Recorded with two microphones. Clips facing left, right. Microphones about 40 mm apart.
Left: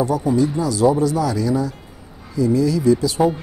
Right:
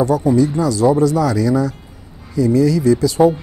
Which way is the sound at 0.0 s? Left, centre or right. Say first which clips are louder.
Right 4 dB; right.